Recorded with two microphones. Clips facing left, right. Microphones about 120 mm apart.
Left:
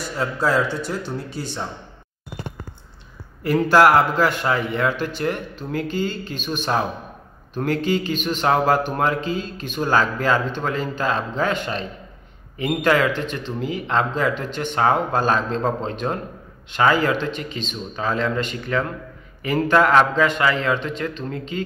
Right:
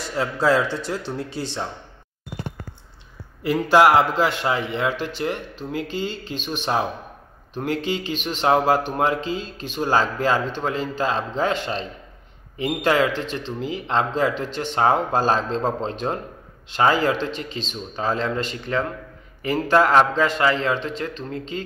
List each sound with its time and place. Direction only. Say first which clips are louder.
0.0 s speech: right 1 dB; 25° right (ahead or behind)
1.3 s speech: right 1 dB; 90° right
3.4 s a man's voice: left 1 dB; 20° right (ahead or behind)